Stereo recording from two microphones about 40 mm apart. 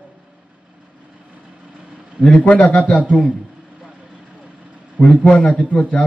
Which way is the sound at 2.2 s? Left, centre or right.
Left.